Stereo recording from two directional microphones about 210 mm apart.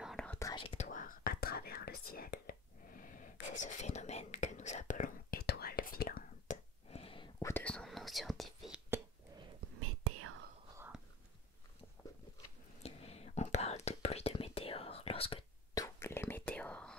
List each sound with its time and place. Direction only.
0.0 s whispering: centre (ahead or behind)
0.4 s speech: 20° left (ahead or behind)
0.8 s whispering: 40° left (ahead or behind)
7.3 s whispering: 10° left (ahead or behind)
9.8 s whispering: 90° right
12.8 s whispering: 30° left (ahead or behind); by 16.9 s 5° left (ahead or behind)